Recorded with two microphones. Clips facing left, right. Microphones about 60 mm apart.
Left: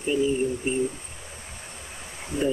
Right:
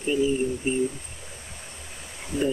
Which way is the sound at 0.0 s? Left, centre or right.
Centre.